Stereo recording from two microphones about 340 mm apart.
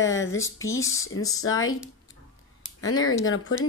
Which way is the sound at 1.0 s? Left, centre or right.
Left.